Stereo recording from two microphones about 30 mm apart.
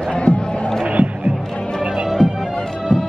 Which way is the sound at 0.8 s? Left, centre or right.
Right.